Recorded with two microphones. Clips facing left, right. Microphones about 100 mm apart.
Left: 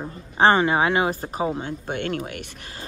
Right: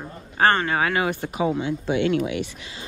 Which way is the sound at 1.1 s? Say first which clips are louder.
Right 2 dB; 35° left (ahead or behind).